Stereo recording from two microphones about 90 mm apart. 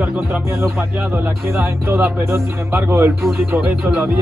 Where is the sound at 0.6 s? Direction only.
30° right (ahead or behind).